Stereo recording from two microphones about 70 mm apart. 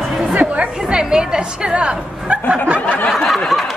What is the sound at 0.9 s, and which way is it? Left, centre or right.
Music, centre.